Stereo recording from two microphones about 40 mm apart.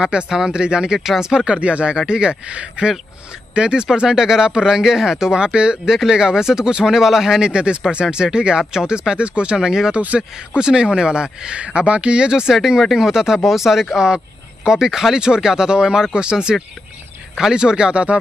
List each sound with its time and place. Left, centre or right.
0.0 s speech: right
0.9 s speech: centre
1.2 s speech: right
9.6 s speech: centre
9.9 s speech: right
10.6 s speech: centre
13.9 s speech: centre